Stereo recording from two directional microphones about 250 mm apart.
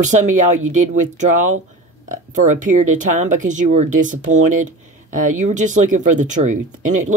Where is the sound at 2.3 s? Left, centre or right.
Right.